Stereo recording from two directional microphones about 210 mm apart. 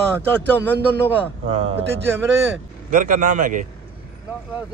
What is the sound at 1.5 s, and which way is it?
Speech, 30° right (ahead or behind).